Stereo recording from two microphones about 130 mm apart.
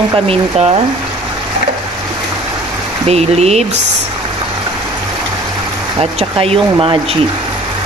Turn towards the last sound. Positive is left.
turn(degrees=-45)  # may be behind; listen again after turning